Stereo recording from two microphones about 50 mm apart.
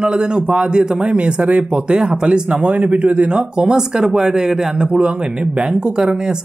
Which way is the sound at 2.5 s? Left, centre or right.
Right.